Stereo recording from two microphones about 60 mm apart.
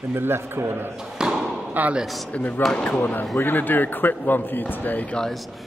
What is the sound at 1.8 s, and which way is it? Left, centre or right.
Speech, right.